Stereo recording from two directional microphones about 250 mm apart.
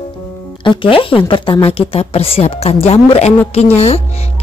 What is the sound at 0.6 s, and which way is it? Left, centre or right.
A woman's voice, left.